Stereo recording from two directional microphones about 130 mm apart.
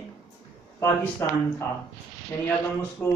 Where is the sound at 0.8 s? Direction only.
20° left (ahead or behind).